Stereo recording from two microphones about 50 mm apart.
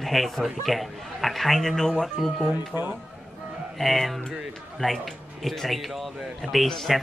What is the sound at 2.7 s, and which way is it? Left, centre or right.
Speech, right.